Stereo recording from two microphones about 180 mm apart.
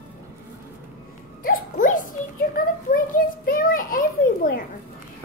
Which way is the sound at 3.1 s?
50° left (ahead or behind).